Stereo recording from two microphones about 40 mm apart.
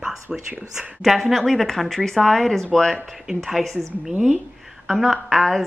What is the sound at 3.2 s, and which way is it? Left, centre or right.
Speech, centre.